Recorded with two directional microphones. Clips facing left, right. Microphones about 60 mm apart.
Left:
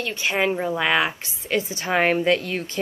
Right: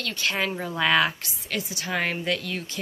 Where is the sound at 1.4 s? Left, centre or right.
Left.